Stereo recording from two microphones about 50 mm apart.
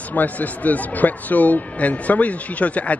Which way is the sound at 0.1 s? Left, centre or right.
Left.